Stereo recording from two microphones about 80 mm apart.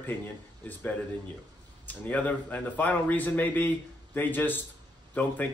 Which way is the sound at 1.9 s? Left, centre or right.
Centre.